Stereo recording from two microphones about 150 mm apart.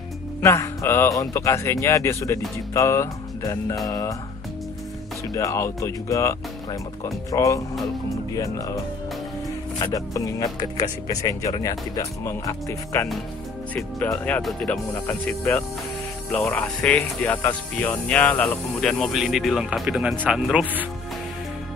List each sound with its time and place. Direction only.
0.4 s speech: 20° left (ahead or behind)
5.3 s speech: 20° left (ahead or behind)
9.8 s speech: 20° left (ahead or behind)
14.4 s speech: 5° left (ahead or behind)
15.0 s speech: 15° left (ahead or behind); by 20.8 s 5° right (ahead or behind)